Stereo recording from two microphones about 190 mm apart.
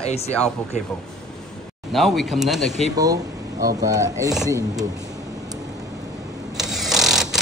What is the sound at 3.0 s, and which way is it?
Speech, 20° right (ahead or behind).